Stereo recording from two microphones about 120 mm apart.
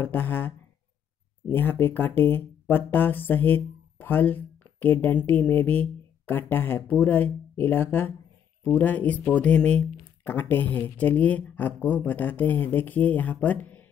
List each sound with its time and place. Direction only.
0.0 s speech: 15° left (ahead or behind)